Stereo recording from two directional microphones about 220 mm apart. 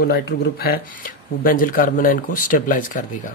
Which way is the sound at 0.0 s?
50° left (ahead or behind).